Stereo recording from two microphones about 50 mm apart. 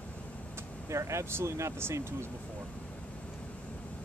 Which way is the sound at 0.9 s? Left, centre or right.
Right.